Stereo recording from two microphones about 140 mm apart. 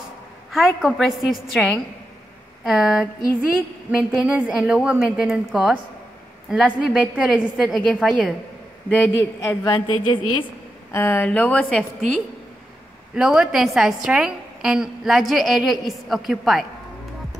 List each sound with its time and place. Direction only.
0.5 s a woman's voice: centre (ahead or behind)
4.2 s a woman's voice: 5° right (ahead or behind)
8.9 s a man's voice: 20° left (ahead or behind)
9.8 s a woman's voice: 35° left (ahead or behind)
10.9 s a woman's voice: 15° left (ahead or behind); by 16.6 s centre (ahead or behind)